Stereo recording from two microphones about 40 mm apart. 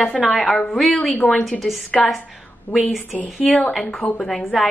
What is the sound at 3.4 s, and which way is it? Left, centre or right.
Speech, centre.